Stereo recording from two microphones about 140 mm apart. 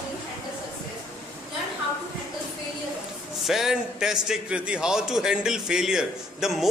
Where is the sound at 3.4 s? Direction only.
Centre (ahead or behind).